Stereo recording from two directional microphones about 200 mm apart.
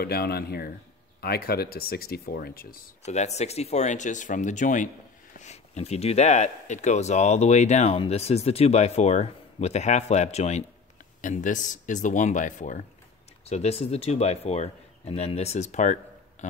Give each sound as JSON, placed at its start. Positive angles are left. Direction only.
{"t": 0.0, "sound": "speech", "side_deg": 50}